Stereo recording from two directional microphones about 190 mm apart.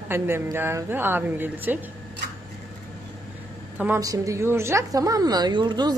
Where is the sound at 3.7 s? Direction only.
10° right (ahead or behind).